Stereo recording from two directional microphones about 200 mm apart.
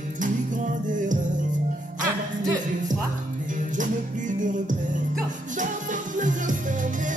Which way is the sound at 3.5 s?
40° right (ahead or behind).